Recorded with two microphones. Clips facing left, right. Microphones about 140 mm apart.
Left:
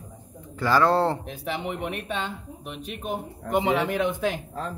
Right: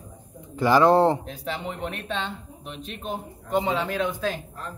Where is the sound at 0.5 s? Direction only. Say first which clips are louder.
Right 3 dB; 15° right (ahead or behind).